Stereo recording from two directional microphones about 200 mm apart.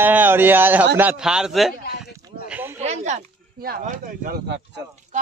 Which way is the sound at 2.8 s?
35° right (ahead or behind).